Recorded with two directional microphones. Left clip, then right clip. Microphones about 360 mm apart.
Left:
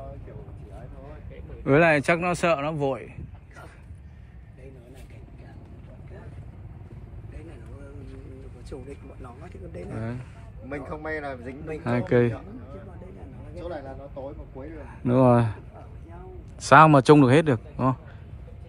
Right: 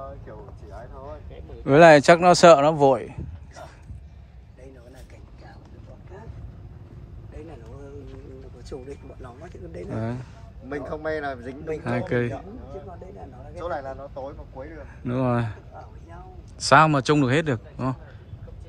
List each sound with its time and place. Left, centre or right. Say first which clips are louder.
1.6 s speech: right 7 dB; centre
8.6 s a sound: right 3 dB; right
10.8 s speech: right 4 dB; right
11.8 s a man's voice: left 4 dB; centre
13.6 s speech: right 5 dB; right
15.0 s a man's voice: left 6 dB; centre
16.6 s a man's voice: left 3 dB; centre